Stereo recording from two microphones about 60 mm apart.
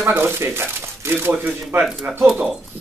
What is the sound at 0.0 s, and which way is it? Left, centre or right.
Speech, right.